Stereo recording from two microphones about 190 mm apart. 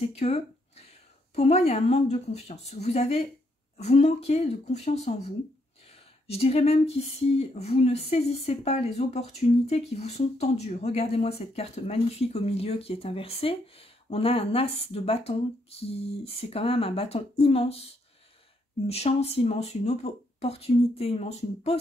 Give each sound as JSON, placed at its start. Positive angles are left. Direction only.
{"t": 0.0, "sound": "speech", "side_deg": 35}
{"t": 6.2, "sound": "speech", "side_deg": 35}